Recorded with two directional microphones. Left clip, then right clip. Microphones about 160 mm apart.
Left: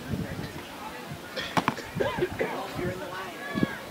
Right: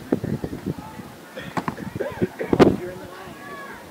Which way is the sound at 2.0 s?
40° right (ahead or behind).